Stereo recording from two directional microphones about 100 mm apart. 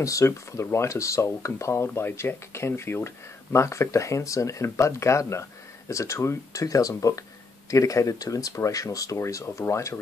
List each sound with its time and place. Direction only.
0.0 s speech: 30° left (ahead or behind)